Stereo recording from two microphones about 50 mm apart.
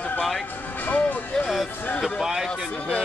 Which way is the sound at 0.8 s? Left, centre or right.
Left.